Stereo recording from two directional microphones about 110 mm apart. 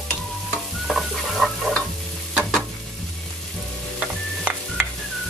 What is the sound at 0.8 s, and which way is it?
Stir, centre (ahead or behind).